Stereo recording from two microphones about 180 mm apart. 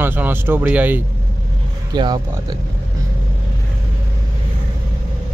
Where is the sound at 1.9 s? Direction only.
25° right (ahead or behind).